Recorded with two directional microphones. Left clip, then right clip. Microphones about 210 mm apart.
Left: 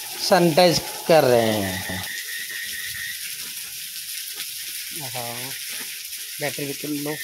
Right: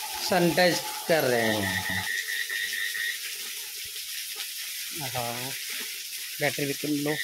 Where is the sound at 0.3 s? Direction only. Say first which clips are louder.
Left 7 dB; 25° left (ahead or behind).